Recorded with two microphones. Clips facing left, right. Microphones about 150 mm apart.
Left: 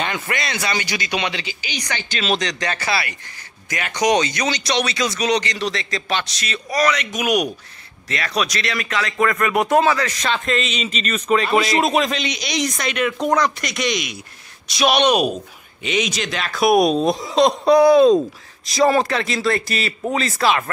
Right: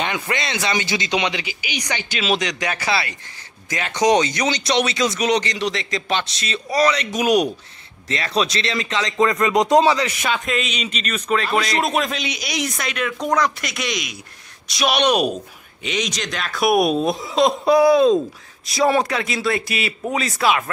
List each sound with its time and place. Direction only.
0.0 s speech: 20° right (ahead or behind)